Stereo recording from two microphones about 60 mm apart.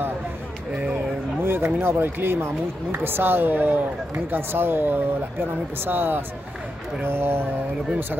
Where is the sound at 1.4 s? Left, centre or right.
Right.